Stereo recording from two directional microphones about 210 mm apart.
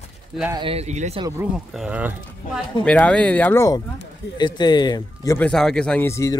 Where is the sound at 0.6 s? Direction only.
30° right (ahead or behind).